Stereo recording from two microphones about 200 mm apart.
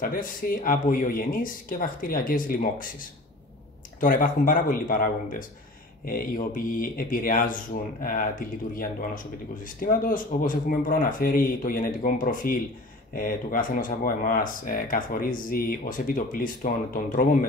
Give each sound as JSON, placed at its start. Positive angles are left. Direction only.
{"t": 0.0, "sound": "speech", "side_deg": 45}